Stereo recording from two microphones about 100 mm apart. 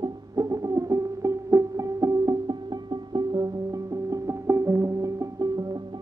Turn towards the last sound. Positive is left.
turn(degrees=-35)  # may be behind; listen again after turning